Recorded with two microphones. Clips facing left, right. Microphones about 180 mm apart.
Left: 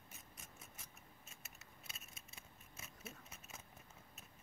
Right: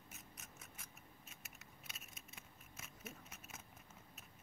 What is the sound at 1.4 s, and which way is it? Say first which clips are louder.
Scissors: right 1 dB; 30° left (ahead or behind).